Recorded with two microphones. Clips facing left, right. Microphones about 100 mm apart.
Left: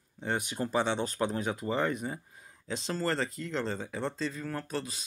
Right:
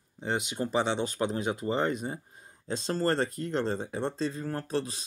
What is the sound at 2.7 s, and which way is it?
Speech, 35° right (ahead or behind).